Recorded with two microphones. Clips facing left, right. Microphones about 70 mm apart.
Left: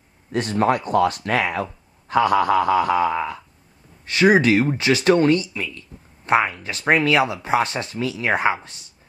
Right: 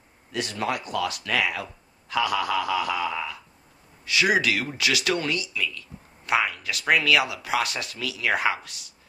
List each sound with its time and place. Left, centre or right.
0.3 s speech: left